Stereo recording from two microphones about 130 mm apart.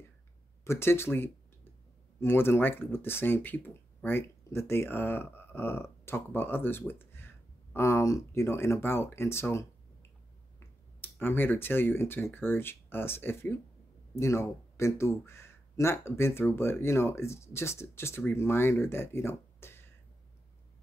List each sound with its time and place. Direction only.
0.7 s speech: 20° left (ahead or behind)